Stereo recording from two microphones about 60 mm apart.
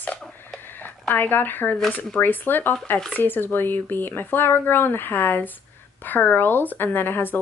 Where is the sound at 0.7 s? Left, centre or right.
Left.